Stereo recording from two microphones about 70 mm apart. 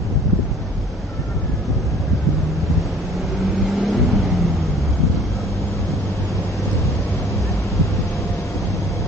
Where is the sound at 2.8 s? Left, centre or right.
Centre.